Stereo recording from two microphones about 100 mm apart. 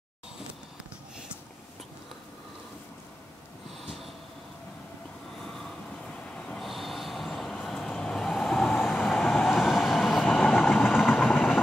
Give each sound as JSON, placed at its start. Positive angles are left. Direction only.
{"t": 3.8, "sound": "vehicle", "side_deg": 0}
{"t": 5.4, "sound": "vehicle", "side_deg": 5}
{"t": 9.3, "sound": "train", "side_deg": 0}
{"t": 10.2, "sound": "vehicle", "side_deg": 15}
{"t": 11.1, "sound": "vehicle", "side_deg": 15}